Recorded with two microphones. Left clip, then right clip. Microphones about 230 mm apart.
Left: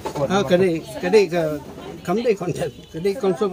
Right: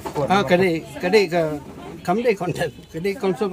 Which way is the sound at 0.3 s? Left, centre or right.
Centre.